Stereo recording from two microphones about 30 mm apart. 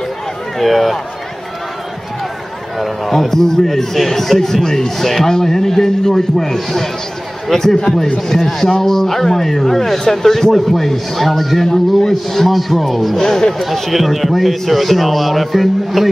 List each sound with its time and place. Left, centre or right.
0.6 s a man's voice: centre
2.8 s a man's voice: centre